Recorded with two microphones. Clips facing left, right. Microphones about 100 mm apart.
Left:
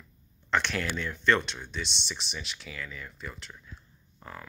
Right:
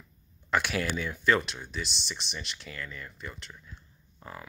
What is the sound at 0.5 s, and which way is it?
Speech, 5° right (ahead or behind).